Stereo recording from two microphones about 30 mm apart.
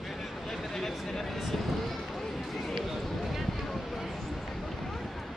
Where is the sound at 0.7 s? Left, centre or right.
Centre.